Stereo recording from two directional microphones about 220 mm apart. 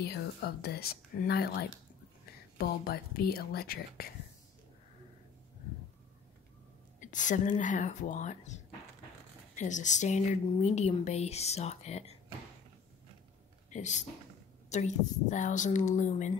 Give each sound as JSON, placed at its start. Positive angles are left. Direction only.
{"t": 0.0, "sound": "speech", "side_deg": 45}
{"t": 7.0, "sound": "a woman's voice", "side_deg": 35}
{"t": 13.7, "sound": "a woman's voice", "side_deg": 35}